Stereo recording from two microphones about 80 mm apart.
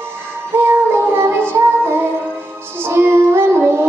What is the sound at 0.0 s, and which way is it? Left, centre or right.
Music, right.